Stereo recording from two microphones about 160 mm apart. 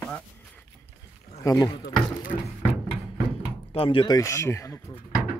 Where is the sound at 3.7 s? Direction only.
35° left (ahead or behind).